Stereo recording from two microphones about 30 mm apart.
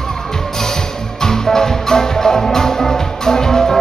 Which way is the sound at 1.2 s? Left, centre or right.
Centre.